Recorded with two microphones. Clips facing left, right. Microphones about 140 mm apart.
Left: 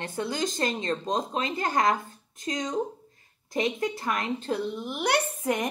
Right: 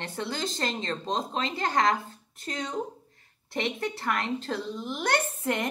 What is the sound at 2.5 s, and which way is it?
A woman's voice, 15° left (ahead or behind).